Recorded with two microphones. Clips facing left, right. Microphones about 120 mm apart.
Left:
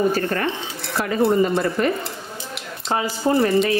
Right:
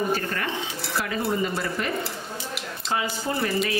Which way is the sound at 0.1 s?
40° left (ahead or behind).